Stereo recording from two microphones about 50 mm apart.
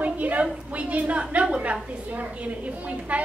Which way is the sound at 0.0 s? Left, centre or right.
Right.